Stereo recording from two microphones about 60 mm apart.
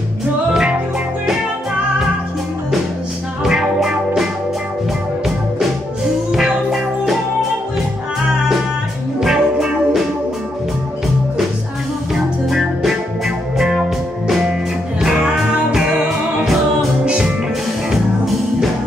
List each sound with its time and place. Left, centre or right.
0.5 s music: centre
3.4 s music: centre
6.3 s music: centre
9.2 s music: centre
12.1 s music: centre
17.0 s music: centre